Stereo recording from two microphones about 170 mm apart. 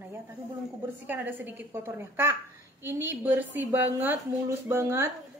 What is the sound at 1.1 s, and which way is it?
A woman's voice, 10° right (ahead or behind).